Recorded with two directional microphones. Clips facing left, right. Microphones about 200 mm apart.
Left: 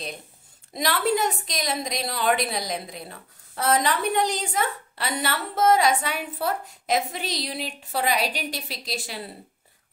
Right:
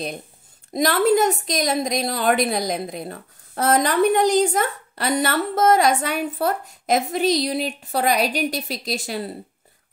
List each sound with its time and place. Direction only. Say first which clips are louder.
0.7 s a woman's voice: right 7 dB; 45° right (ahead or behind)